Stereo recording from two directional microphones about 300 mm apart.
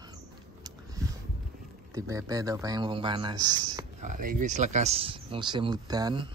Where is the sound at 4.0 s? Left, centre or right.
Right.